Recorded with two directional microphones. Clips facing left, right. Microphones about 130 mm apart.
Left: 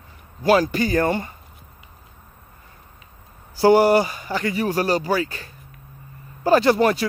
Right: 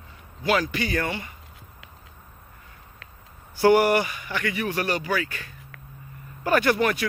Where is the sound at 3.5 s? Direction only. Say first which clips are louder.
Left 4 dB; 30° left (ahead or behind).